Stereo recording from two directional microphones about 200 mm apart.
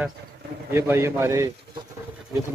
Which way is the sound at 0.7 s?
10° right (ahead or behind).